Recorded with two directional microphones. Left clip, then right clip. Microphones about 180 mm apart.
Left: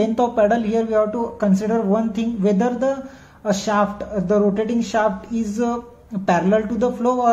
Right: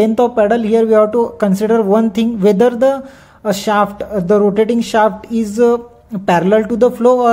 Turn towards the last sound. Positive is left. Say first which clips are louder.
# right 9 dB
turn(degrees=-45)  # may be behind; listen again after turning